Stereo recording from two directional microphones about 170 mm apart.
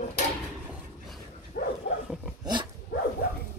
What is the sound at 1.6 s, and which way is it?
Dog, 65° left (ahead or behind).